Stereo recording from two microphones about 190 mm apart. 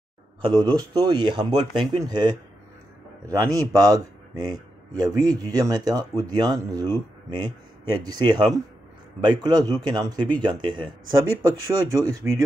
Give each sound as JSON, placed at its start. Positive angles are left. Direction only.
{"t": 0.4, "sound": "speech", "side_deg": -25}
{"t": 11.9, "sound": "speech", "side_deg": -20}